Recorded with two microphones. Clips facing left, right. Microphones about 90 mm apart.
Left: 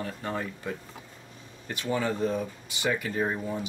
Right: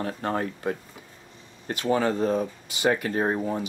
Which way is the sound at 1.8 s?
50° right (ahead or behind).